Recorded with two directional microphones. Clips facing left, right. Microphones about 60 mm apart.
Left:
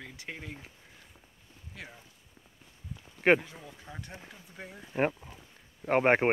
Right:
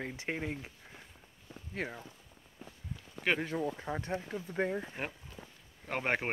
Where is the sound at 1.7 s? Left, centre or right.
Right.